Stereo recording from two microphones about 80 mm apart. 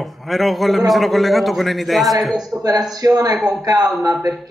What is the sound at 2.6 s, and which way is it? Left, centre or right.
Speech, right.